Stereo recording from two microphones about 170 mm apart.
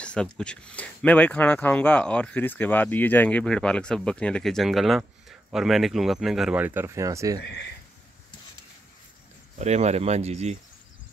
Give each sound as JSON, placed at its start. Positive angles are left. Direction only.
{"t": 0.0, "sound": "speech", "side_deg": 5}
{"t": 9.6, "sound": "speech", "side_deg": -40}